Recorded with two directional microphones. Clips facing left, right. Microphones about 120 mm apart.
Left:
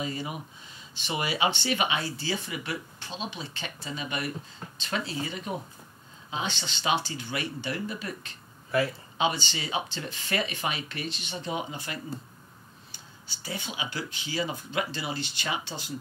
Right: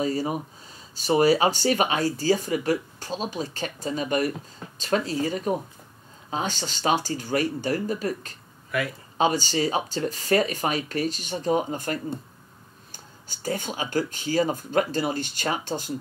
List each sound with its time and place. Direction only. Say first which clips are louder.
0.0 s speech: right 8 dB; 40° right (ahead or behind)
8.7 s speech: left 1 dB; 30° left (ahead or behind)
9.2 s speech: right 6 dB; 40° right (ahead or behind)